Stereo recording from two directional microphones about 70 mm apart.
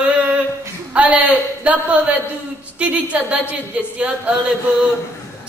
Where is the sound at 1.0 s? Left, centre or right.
Right.